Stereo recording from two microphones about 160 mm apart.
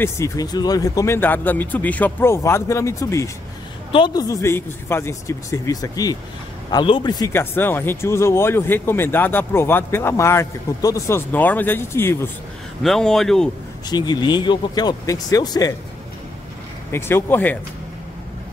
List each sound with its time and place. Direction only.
0.0 s a man's voice: 20° left (ahead or behind)
7.3 s speech: 15° left (ahead or behind)
12.8 s speech: centre (ahead or behind)
13.8 s a man's voice: 25° left (ahead or behind)
16.9 s speech: 15° left (ahead or behind)